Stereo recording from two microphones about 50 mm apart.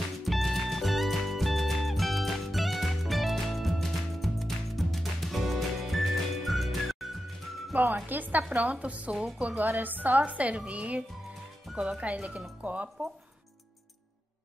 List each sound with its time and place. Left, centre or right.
0.2 s music: centre
7.7 s a woman's voice: right
9.7 s a woman's voice: right